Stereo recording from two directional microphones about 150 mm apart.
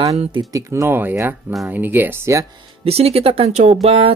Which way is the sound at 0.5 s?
20° right (ahead or behind).